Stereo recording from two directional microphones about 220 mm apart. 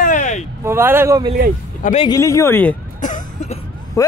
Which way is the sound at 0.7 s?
10° right (ahead or behind).